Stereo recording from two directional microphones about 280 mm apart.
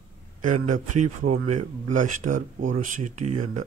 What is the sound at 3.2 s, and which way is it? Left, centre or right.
Speech, right.